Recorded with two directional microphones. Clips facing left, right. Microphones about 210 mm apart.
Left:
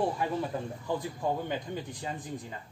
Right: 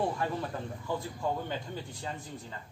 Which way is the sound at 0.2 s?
15° left (ahead or behind).